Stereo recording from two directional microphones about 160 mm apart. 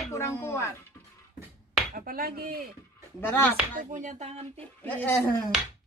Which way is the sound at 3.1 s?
15° left (ahead or behind).